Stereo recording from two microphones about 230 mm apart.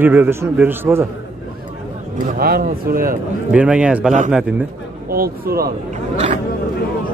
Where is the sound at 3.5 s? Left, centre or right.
Centre.